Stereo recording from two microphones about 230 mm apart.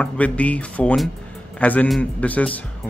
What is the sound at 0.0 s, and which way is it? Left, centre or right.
Speech, centre.